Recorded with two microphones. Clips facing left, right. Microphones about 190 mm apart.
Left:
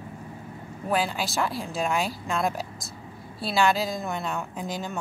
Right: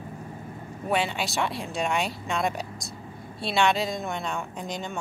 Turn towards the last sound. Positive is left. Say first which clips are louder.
# left 1 dB
turn(degrees=5)  # may be behind; listen again after turning